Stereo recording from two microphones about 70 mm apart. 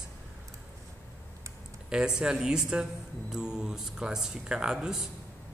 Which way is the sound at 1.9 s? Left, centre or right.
Centre.